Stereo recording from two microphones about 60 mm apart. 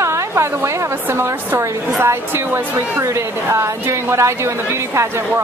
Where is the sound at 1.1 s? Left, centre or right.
Right.